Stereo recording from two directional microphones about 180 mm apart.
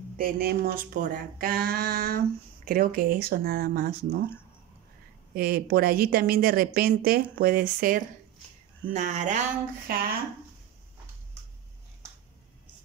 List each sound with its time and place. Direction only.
0.2 s speech: 55° right (ahead or behind)
5.3 s speech: 55° right (ahead or behind)